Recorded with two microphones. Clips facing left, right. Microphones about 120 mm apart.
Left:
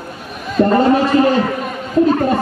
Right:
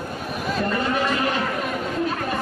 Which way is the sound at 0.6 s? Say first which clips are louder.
Left 12 dB; 35° left (ahead or behind).